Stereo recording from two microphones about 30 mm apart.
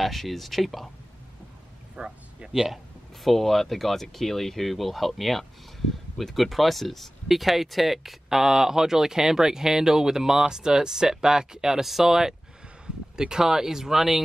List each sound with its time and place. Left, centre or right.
0.0 s speech: centre
2.0 s speech: right
3.3 s speech: centre; by 11.8 s right
11.8 s speech: centre